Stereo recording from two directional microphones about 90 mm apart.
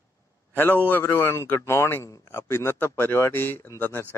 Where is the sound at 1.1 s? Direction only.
30° left (ahead or behind).